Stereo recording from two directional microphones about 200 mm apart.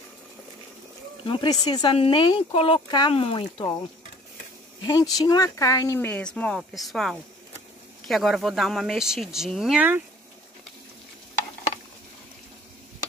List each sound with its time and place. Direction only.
1.2 s speech: 25° left (ahead or behind)
4.8 s speech: 20° left (ahead or behind); by 10.0 s 10° right (ahead or behind)